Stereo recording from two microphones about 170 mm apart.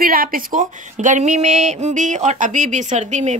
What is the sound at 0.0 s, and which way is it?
Speech, 55° right (ahead or behind).